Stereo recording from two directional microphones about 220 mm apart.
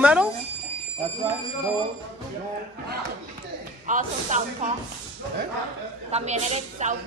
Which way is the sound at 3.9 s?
35° right (ahead or behind).